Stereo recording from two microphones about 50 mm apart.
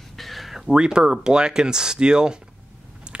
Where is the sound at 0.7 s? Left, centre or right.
Centre.